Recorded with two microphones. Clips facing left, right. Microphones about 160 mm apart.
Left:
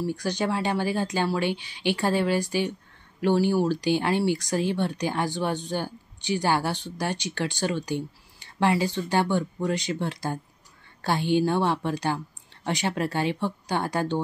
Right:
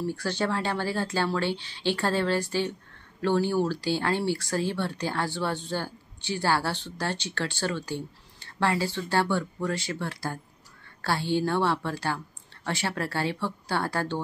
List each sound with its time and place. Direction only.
0.0 s speech: 15° left (ahead or behind)